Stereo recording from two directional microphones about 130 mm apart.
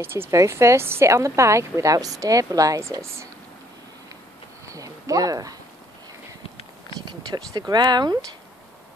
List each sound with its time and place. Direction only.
0.0 s a woman's voice: 20° right (ahead or behind)
4.6 s a sound: 25° right (ahead or behind)
7.1 s speech: 30° right (ahead or behind)